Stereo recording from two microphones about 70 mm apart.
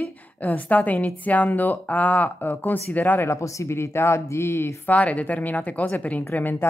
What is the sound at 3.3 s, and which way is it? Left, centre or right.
Speech, left.